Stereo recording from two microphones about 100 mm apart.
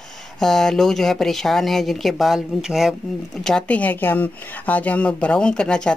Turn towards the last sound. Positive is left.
turn(degrees=10)  # may be behind; listen again after turning